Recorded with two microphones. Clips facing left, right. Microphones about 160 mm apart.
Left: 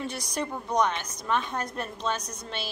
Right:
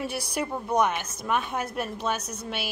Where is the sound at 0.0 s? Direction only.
10° right (ahead or behind).